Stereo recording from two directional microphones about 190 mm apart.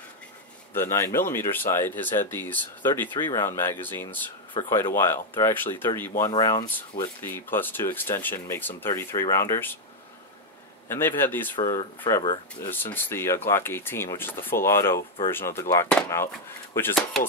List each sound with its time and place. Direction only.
0.7 s speech: 15° left (ahead or behind)
10.9 s speech: 10° left (ahead or behind)